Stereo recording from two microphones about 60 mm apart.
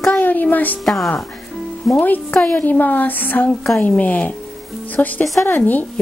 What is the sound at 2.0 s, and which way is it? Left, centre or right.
A woman's voice, left.